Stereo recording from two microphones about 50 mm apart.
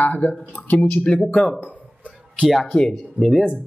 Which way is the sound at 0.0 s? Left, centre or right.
Left.